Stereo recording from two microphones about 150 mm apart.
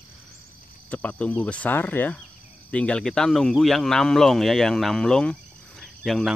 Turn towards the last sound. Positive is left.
turn(degrees=0)  # may be behind; listen again after turning